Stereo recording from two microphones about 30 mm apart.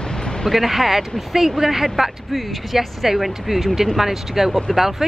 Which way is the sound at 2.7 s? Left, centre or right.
Centre.